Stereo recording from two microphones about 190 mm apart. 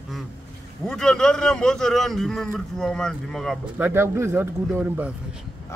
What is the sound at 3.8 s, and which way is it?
Speech, 10° right (ahead or behind).